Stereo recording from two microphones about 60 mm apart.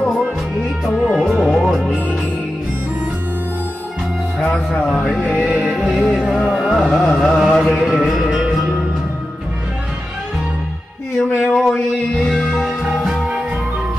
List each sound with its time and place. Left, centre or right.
0.2 s music: centre
4.5 s music: centre
11.3 s a sound: centre
12.2 s music: centre